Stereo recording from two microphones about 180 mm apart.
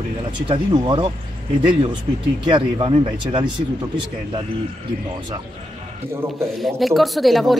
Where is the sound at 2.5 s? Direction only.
30° right (ahead or behind).